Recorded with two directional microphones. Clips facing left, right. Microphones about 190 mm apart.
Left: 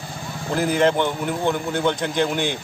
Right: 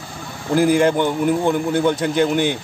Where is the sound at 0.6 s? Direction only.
10° right (ahead or behind).